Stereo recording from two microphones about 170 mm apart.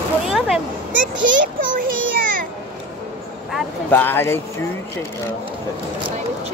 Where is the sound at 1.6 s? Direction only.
55° right (ahead or behind).